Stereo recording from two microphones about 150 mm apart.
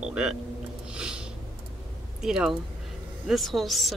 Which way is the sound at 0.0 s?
5° right (ahead or behind).